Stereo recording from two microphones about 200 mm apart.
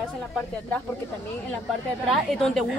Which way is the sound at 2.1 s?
Centre (ahead or behind).